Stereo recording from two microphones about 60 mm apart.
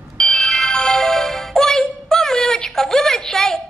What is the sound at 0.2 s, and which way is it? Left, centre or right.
Music, centre.